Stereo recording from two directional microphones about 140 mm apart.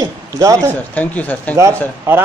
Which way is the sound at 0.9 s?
10° left (ahead or behind).